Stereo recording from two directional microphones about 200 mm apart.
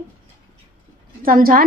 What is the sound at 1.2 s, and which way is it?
Speech, 45° right (ahead or behind).